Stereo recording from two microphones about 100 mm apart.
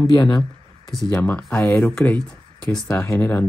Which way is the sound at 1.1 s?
20° left (ahead or behind).